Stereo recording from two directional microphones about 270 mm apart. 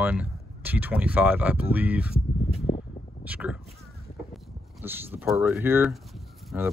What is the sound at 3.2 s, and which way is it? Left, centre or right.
Speech, centre.